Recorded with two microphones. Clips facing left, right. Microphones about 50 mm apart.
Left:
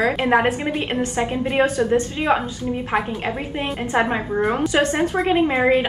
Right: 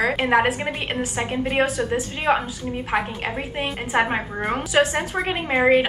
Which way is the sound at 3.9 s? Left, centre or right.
Centre.